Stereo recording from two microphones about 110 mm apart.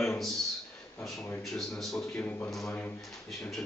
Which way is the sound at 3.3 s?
Centre (ahead or behind).